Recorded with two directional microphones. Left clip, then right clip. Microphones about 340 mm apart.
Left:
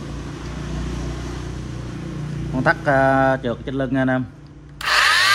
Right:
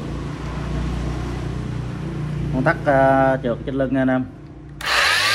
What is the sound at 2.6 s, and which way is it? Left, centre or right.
Speech, left.